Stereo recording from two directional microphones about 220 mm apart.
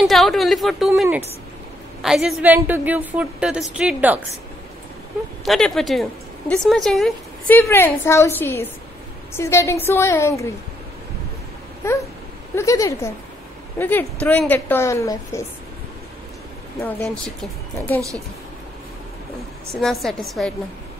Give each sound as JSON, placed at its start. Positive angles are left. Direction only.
{"t": 0.0, "sound": "a woman's voice", "side_deg": 0}
{"t": 5.4, "sound": "a woman's voice", "side_deg": 0}
{"t": 11.8, "sound": "a woman's voice", "side_deg": 10}
{"t": 16.8, "sound": "a woman's voice", "side_deg": 5}
{"t": 19.7, "sound": "a woman's voice", "side_deg": 0}